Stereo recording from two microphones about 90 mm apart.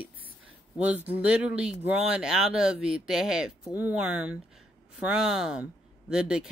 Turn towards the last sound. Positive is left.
turn(degrees=-10)  # may be behind; listen again after turning